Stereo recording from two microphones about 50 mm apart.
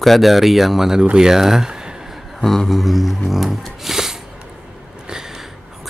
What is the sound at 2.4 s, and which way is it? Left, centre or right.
Speech, centre.